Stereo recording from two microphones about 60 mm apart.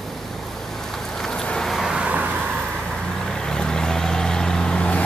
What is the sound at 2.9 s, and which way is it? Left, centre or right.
Vehicle, centre.